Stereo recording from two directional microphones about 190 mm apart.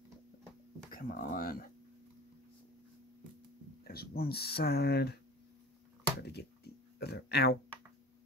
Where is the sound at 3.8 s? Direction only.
55° left (ahead or behind).